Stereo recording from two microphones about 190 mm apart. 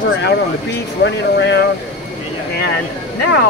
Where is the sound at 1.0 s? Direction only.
65° left (ahead or behind).